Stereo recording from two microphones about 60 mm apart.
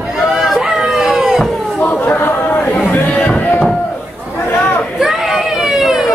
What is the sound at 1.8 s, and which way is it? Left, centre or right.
Chatter, left.